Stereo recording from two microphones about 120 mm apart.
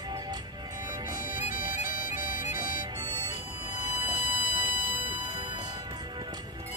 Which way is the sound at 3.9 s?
35° right (ahead or behind).